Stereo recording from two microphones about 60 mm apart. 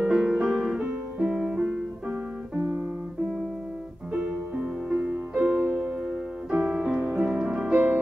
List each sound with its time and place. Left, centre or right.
0.0 s music: centre
4.1 s music: centre
6.5 s music: centre
7.7 s music: right